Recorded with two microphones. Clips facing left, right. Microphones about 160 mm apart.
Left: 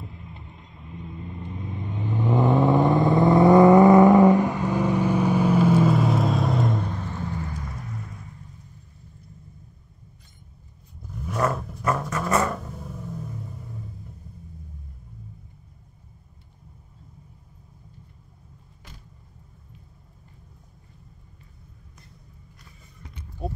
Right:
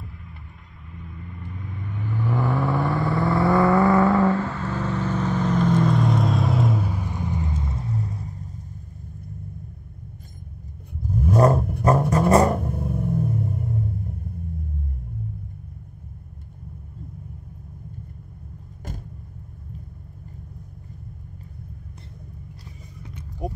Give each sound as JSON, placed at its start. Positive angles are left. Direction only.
{"t": 0.0, "sound": "vehicle", "side_deg": 20}
{"t": 10.9, "sound": "vehicle", "side_deg": -55}
{"t": 11.2, "sound": "vehicle", "side_deg": -35}
{"t": 12.5, "sound": "vehicle", "side_deg": -55}
{"t": 23.4, "sound": "a sound", "side_deg": -15}